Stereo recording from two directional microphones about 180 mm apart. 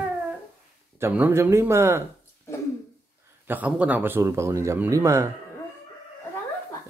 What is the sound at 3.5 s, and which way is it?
Speech, 10° right (ahead or behind).